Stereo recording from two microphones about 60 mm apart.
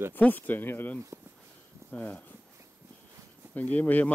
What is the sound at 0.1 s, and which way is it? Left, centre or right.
Speech, left.